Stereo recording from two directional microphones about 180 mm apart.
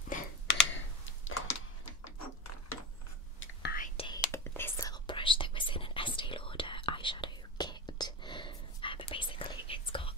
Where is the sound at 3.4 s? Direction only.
60° left (ahead or behind).